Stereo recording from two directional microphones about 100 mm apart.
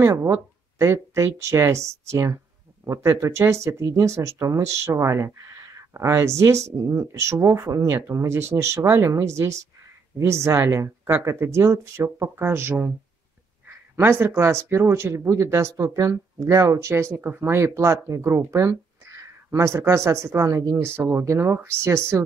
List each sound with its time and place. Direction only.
0.0 s speech: 30° right (ahead or behind)